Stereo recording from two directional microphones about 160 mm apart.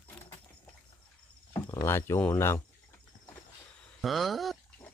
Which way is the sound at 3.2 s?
10° left (ahead or behind).